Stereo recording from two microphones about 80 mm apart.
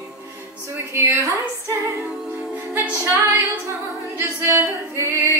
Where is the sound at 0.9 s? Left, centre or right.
Right.